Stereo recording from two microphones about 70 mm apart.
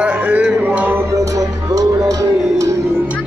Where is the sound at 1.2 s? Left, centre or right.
Right.